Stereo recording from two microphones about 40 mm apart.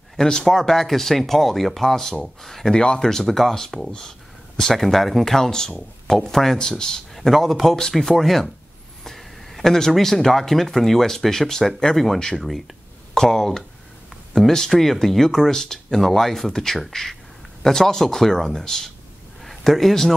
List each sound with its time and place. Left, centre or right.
0.2 s speech: centre
2.7 s speech: left
7.2 s speech: centre